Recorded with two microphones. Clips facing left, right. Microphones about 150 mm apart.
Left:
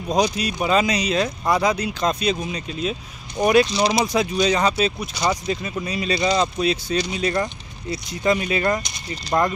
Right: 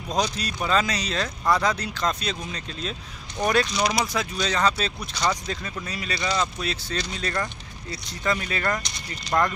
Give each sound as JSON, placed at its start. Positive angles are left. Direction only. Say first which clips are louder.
{"t": 0.1, "sound": "speech", "louder": "left 6 dB", "side_deg": 15}
{"t": 3.7, "sound": "speech", "louder": "left 4 dB", "side_deg": 30}
{"t": 4.0, "sound": "speech", "louder": "left 7 dB", "side_deg": 20}